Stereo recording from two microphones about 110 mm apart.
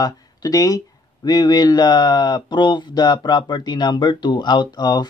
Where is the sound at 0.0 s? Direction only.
35° left (ahead or behind).